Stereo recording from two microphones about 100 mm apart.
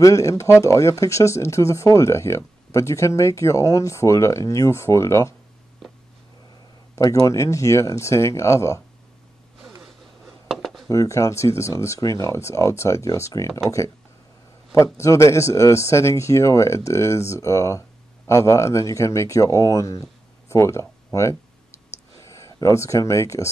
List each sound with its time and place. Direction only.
0.0 s a man's voice: 30° left (ahead or behind)
7.0 s speech: 35° left (ahead or behind)
9.8 s a sound: centre (ahead or behind)
10.9 s speech: 30° left (ahead or behind)
14.7 s a man's voice: 30° left (ahead or behind)